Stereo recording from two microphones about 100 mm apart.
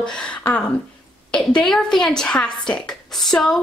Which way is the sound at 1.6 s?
5° left (ahead or behind).